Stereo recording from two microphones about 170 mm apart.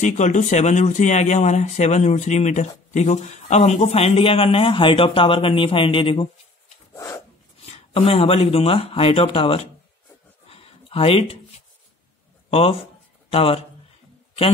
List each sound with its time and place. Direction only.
0.0 s speech: 45° left (ahead or behind)
7.7 s speech: 35° left (ahead or behind)
10.5 s a sound: 35° left (ahead or behind)
12.4 s a man's voice: 35° left (ahead or behind)